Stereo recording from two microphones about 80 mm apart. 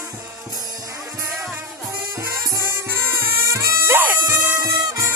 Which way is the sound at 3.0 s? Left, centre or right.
Right.